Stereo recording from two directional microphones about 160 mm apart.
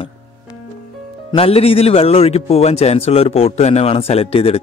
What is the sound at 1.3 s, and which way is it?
A man's voice, 40° left (ahead or behind).